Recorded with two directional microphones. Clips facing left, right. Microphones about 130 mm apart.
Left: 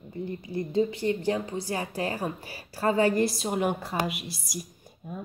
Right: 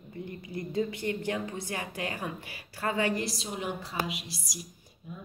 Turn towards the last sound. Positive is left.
turn(degrees=50)  # may be behind; listen again after turning